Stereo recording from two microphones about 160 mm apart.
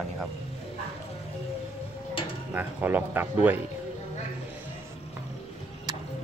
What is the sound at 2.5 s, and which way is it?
Speech, 10° right (ahead or behind).